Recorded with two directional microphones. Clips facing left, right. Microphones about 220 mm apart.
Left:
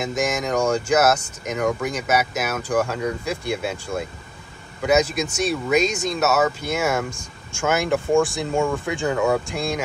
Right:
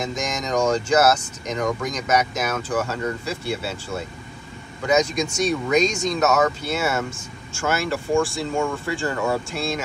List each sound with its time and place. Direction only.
0.0 s speech: 5° left (ahead or behind)